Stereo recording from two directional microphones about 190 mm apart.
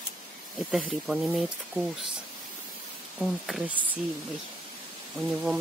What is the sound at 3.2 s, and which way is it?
Speech, centre (ahead or behind).